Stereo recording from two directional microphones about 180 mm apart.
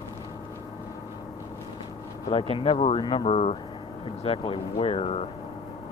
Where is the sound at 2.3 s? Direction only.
30° left (ahead or behind).